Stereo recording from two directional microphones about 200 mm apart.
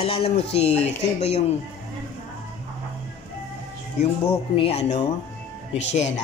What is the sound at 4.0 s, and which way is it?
Speech, 30° left (ahead or behind).